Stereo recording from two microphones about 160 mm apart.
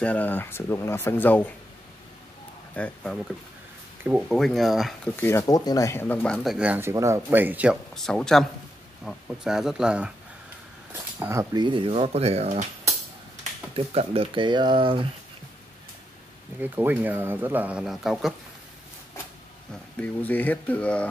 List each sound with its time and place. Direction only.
0.0 s speech: 10° left (ahead or behind)
2.7 s speech: 5° left (ahead or behind)
4.3 s speech: centre (ahead or behind)
5.1 s speech: 15° left (ahead or behind); by 7.8 s 10° right (ahead or behind)
7.9 s speech: 5° left (ahead or behind)
10.9 s speech: 20° right (ahead or behind)
11.6 s speech: 30° right (ahead or behind)
13.7 s speech: 35° right (ahead or behind)
16.5 s speech: 10° right (ahead or behind)
20.0 s speech: 10° left (ahead or behind)